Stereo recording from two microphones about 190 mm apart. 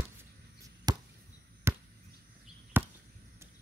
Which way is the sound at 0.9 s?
20° right (ahead or behind).